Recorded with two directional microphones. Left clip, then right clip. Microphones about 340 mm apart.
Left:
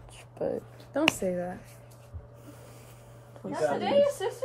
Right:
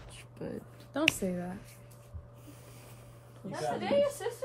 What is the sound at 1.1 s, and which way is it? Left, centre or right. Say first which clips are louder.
Speech: left 6 dB; centre.